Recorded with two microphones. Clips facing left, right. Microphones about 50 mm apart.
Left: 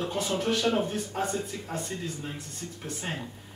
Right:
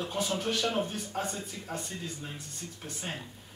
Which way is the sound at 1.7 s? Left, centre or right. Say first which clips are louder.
Left 2 dB; left.